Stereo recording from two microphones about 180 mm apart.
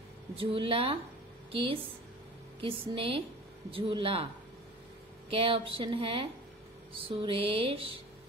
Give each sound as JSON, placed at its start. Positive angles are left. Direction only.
{"t": 0.4, "sound": "music", "side_deg": -30}
{"t": 3.7, "sound": "a woman's voice", "side_deg": -30}
{"t": 5.3, "sound": "a woman's voice", "side_deg": -30}
{"t": 6.9, "sound": "music", "side_deg": -30}